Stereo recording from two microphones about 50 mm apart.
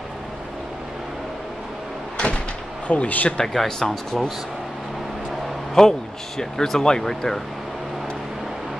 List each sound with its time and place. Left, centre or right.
2.9 s speech: left
3.3 s speech: centre
5.8 s speech: centre